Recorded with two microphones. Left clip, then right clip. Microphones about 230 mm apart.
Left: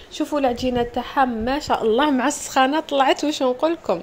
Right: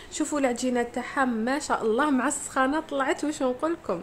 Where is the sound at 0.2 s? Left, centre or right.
Centre.